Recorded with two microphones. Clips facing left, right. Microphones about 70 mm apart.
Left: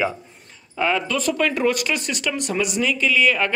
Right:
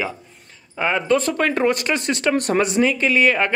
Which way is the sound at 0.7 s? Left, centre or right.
Centre.